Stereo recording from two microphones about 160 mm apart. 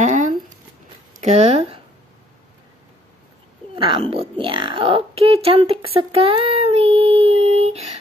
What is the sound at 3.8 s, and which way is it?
Speech, 35° right (ahead or behind).